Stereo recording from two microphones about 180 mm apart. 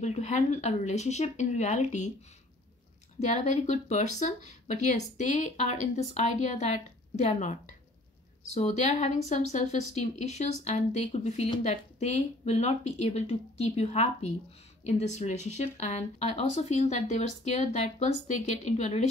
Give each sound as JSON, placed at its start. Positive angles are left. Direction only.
{"t": 0.0, "sound": "speech", "side_deg": 40}
{"t": 3.2, "sound": "speech", "side_deg": 40}